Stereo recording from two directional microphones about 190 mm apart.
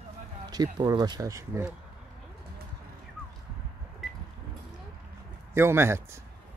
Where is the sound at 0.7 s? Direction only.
20° right (ahead or behind).